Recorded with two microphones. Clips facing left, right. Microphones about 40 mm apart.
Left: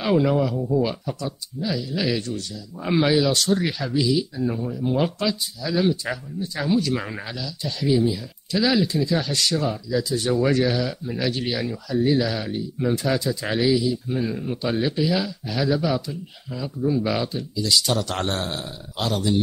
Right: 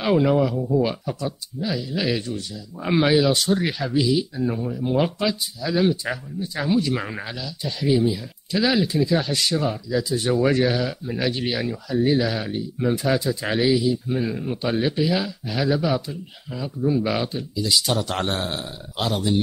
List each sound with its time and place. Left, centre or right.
0.0 s speech: centre